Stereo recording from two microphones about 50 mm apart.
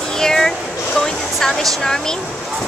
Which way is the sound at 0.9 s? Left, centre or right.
Centre.